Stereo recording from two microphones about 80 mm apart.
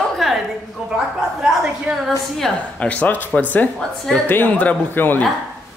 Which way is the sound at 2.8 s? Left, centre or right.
Centre.